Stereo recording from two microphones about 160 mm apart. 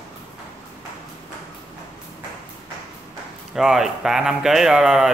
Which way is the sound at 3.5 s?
Centre (ahead or behind).